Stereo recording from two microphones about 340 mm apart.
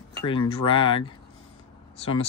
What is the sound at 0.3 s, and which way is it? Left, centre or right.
Speech, centre.